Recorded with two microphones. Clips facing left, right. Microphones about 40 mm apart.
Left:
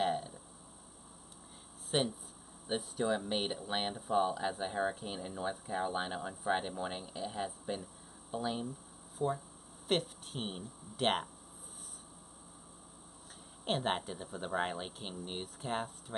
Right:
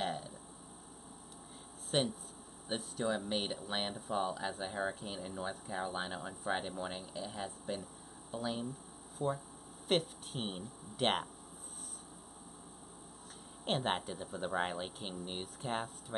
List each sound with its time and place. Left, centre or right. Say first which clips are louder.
0.0 s a sound: left 5 dB; centre
1.9 s speech: even; centre
9.2 s speech: left 2 dB; right
9.8 s speech: even; centre
13.7 s speech: left 1 dB; centre